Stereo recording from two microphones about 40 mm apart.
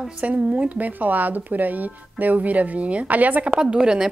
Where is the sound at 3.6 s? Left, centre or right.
Right.